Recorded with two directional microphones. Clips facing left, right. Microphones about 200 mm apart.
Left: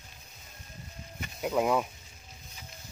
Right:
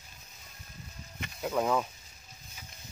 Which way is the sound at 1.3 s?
10° left (ahead or behind).